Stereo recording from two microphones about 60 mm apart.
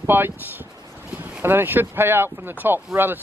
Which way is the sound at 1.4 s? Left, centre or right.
Right.